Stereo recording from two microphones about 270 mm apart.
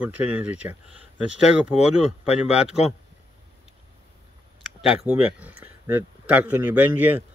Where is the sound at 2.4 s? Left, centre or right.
Centre.